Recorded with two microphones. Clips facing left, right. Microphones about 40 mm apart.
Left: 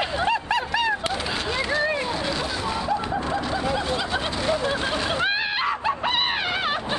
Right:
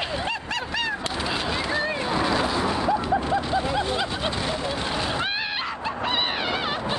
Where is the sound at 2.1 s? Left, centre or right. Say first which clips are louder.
Right 4 dB; centre.